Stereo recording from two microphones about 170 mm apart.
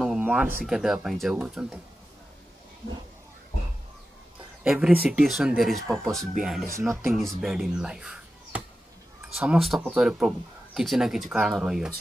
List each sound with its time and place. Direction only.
0.0 s a sound: 5° right (ahead or behind)
0.7 s speech: 5° right (ahead or behind)
4.6 s speech: 5° right (ahead or behind)